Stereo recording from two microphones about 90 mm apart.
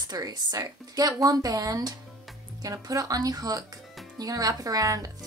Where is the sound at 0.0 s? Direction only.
45° right (ahead or behind).